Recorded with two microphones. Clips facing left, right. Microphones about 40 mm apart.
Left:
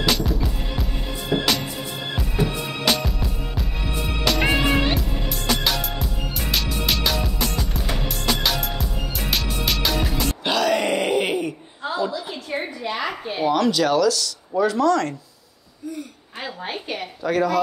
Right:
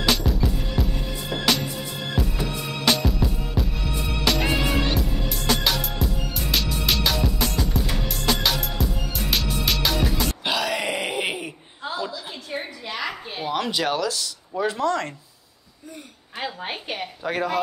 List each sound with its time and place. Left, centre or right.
0.0 s music: centre
1.3 s music: centre
3.1 s music: centre
4.4 s music: left
4.9 s music: centre
11.8 s a sound: centre
12.9 s a sound: centre
13.5 s speech: right
17.3 s speech: right